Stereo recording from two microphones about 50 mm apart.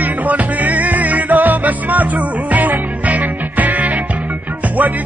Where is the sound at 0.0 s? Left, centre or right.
Right.